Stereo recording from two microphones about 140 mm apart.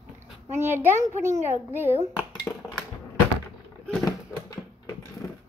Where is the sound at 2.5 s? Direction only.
5° left (ahead or behind).